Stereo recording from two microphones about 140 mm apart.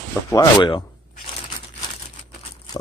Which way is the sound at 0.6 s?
35° left (ahead or behind).